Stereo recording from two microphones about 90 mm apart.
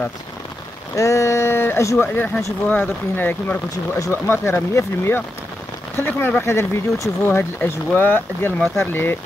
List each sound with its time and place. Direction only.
0.9 s speech: 35° left (ahead or behind)
2.2 s speech: 15° left (ahead or behind)